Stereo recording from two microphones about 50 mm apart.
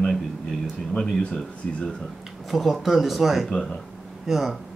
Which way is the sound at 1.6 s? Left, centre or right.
Left.